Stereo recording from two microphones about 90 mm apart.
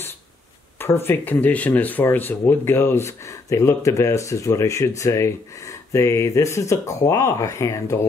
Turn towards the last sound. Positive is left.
turn(degrees=35)  # may be behind; listen again after turning